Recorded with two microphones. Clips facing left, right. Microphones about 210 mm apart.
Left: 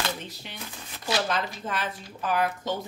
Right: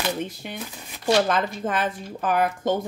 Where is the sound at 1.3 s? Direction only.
50° right (ahead or behind).